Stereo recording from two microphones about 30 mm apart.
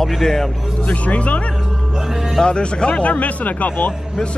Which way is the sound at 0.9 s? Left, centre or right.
Left.